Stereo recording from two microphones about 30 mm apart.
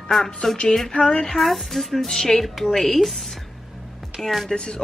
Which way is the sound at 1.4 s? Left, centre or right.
Centre.